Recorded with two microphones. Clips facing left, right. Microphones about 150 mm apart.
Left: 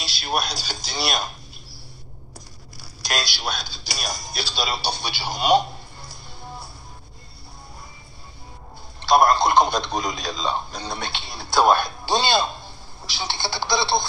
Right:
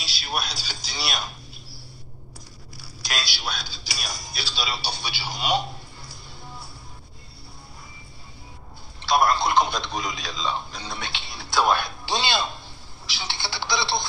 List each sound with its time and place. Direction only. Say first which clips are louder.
0.0 s speech: left 5 dB; 45° left (ahead or behind)
2.8 s telephone: left 5 dB; 45° left (ahead or behind)
3.3 s speech: left 3 dB; 45° left (ahead or behind)
9.0 s a man's voice: left 4 dB; 40° left (ahead or behind)